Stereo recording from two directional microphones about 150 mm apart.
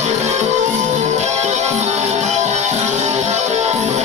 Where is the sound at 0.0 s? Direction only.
50° right (ahead or behind).